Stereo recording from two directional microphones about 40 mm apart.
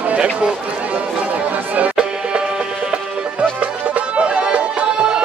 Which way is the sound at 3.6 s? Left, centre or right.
Right.